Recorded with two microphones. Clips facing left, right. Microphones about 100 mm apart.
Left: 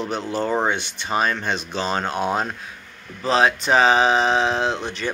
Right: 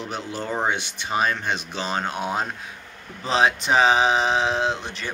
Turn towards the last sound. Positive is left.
turn(degrees=0)  # may be behind; listen again after turning